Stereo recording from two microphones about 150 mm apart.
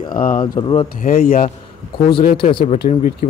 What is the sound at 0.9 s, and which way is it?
Speech, 70° left (ahead or behind).